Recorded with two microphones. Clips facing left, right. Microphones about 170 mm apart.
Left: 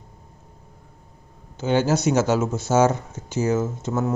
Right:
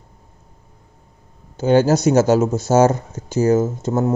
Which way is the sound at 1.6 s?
40° right (ahead or behind).